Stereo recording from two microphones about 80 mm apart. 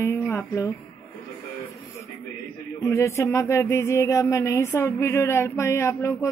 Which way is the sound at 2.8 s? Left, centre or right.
Left.